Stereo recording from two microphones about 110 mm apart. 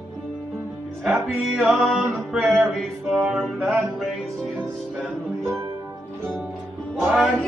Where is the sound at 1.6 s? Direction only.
Centre (ahead or behind).